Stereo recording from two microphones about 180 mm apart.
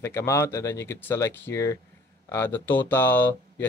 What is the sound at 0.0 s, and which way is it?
Speech, 15° left (ahead or behind).